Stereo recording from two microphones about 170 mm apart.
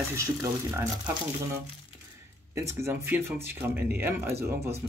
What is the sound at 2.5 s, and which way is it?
Speech, 15° right (ahead or behind).